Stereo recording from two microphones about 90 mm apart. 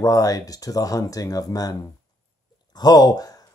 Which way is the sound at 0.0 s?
40° left (ahead or behind).